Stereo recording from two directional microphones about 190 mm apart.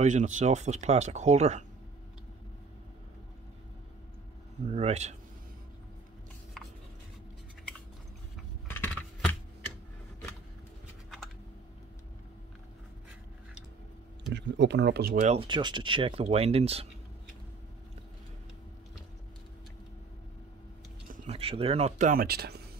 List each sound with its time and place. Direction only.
0.0 s speech: 40° right (ahead or behind)
4.6 s speech: 35° right (ahead or behind)
8.6 s a sound: 10° left (ahead or behind)
14.3 s speech: 65° right (ahead or behind)
15.1 s speech: 35° right (ahead or behind)
15.4 s speech: 25° right (ahead or behind)
21.3 s speech: 30° right (ahead or behind); by 22.6 s 55° right (ahead or behind)